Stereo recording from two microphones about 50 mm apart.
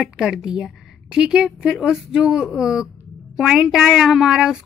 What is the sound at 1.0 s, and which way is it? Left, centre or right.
A woman's voice, centre.